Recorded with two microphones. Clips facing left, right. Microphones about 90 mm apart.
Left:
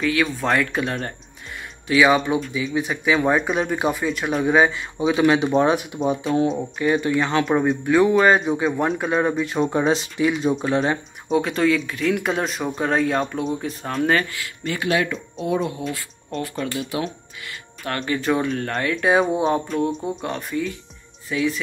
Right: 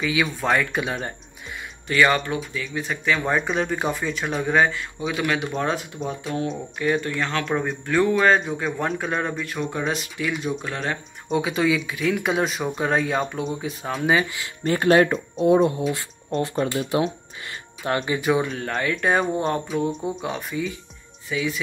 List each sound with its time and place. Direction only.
0.0 s speech: centre (ahead or behind)
4.7 s speech: 20° left (ahead or behind)
6.5 s speech: 5° left (ahead or behind)
9.6 s speech: 25° left (ahead or behind)
11.2 s speech: centre (ahead or behind)
14.6 s speech: 40° right (ahead or behind)
15.4 s speech: 30° right (ahead or behind)
17.8 s speech: 15° right (ahead or behind)